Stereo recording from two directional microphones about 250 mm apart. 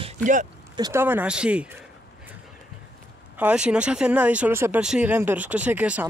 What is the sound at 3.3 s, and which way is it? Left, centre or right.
Speech, centre.